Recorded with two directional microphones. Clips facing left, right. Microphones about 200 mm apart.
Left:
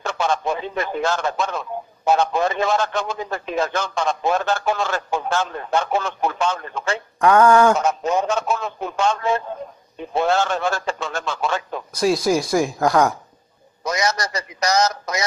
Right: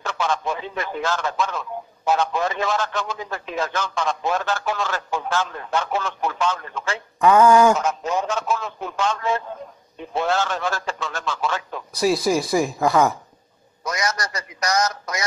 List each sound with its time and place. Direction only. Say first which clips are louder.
0.2 s a man's voice: left 2 dB; 25° left (ahead or behind)
0.6 s a man's voice: left 3 dB; 40° left (ahead or behind)
1.0 s a man's voice: even; 25° left (ahead or behind)
7.2 s speech: even; 5° right (ahead or behind)
7.8 s a man's voice: left 3 dB; 25° left (ahead or behind)
12.0 s speech: left 1 dB; 5° right (ahead or behind)
13.8 s a man's voice: left 4 dB; 25° left (ahead or behind)